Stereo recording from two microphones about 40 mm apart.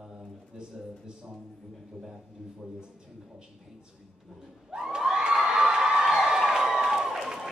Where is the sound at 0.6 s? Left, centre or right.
Right.